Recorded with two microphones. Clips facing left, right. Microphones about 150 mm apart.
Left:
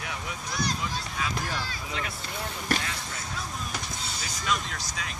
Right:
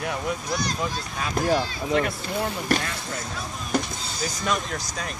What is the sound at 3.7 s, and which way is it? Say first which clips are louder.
Power windows: right 9 dB; 45° right (ahead or behind).